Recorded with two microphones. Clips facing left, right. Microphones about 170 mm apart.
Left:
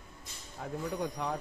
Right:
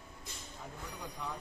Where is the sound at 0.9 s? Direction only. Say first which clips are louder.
Left 8 dB; 70° left (ahead or behind).